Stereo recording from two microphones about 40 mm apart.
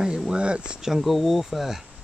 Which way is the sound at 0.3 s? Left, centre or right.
Right.